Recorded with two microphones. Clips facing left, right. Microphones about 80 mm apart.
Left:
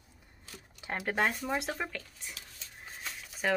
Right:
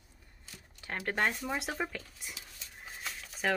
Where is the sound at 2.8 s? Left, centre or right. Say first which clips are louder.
Even; centre.